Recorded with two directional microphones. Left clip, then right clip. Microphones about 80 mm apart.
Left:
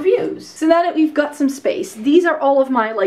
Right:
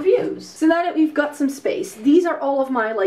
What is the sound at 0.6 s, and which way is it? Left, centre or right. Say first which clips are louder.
A woman's voice: left 3 dB; left.